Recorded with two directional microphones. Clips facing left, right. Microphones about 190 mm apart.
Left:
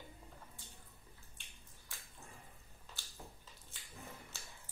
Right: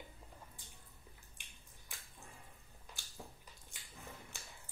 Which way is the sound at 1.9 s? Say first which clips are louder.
Right 1 dB; 15° right (ahead or behind).